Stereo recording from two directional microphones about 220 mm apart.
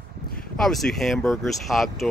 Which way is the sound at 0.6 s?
Centre (ahead or behind).